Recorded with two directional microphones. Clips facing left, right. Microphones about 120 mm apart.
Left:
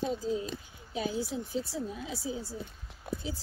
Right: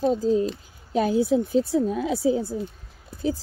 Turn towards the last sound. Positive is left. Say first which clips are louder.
# left 9 dB
turn(degrees=60)  # may be behind; listen again after turning